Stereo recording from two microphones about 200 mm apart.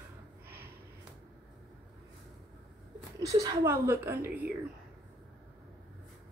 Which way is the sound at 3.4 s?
10° right (ahead or behind).